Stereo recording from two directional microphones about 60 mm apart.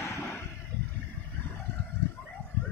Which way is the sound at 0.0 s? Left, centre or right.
Left.